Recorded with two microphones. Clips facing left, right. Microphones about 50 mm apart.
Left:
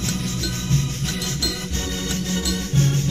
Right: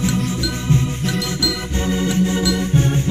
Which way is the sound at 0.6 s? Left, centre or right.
Centre.